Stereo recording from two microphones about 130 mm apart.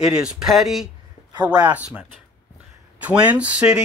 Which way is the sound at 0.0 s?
5° right (ahead or behind).